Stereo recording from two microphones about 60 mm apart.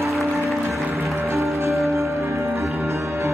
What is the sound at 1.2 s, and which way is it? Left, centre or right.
Music, right.